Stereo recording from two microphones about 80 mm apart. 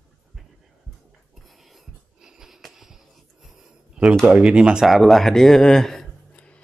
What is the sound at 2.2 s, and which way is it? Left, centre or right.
Wheeze, centre.